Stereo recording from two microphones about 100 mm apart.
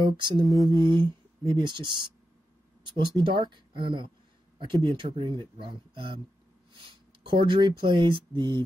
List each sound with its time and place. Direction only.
0.0 s mantra: 45° right (ahead or behind)
0.7 s speech: 45° right (ahead or behind)